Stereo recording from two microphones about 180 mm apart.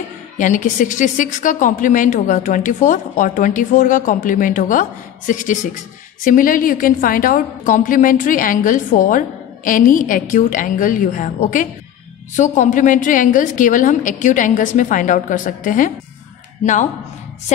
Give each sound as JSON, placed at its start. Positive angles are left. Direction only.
{"t": 0.4, "sound": "a woman's voice", "side_deg": 45}